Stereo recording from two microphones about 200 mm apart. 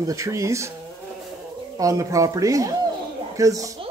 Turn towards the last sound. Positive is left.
turn(degrees=-15)  # may be behind; listen again after turning